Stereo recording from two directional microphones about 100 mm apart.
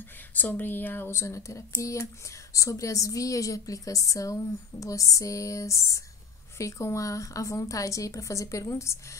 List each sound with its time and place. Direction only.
0.3 s a woman's voice: 15° left (ahead or behind)